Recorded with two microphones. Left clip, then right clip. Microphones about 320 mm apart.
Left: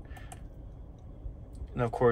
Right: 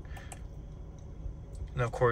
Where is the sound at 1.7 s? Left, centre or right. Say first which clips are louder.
Left 2 dB; centre.